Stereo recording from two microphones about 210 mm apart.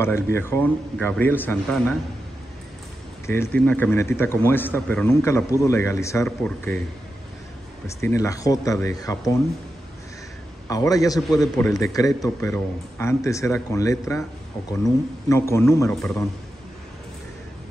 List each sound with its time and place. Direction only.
0.0 s a man's voice: 10° left (ahead or behind)
3.3 s a man's voice: 10° left (ahead or behind)
7.8 s a man's voice: 15° left (ahead or behind)
10.7 s a man's voice: 15° left (ahead or behind)